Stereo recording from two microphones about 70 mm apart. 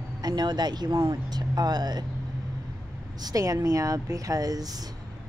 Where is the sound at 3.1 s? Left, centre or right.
Right.